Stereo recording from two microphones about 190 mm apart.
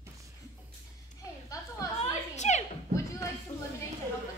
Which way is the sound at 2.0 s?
40° left (ahead or behind).